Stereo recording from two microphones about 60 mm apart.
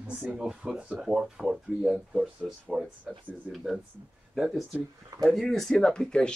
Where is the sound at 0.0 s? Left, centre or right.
Centre.